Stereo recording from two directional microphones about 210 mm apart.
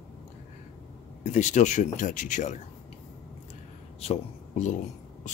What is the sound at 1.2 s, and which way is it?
Speech, 35° left (ahead or behind).